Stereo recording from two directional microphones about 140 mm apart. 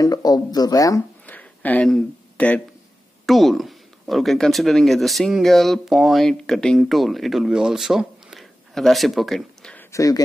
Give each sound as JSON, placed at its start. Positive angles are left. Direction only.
{"t": 0.0, "sound": "speech", "side_deg": 25}
{"t": 1.2, "sound": "a sound", "side_deg": 10}
{"t": 3.3, "sound": "speech", "side_deg": 0}
{"t": 9.8, "sound": "speech", "side_deg": 25}